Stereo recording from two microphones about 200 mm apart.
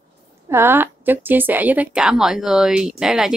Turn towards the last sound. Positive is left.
turn(degrees=-5)  # may be behind; listen again after turning